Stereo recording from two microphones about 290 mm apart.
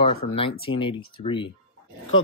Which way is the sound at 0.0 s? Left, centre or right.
Centre.